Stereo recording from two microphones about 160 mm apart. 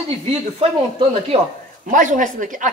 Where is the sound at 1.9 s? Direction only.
55° right (ahead or behind).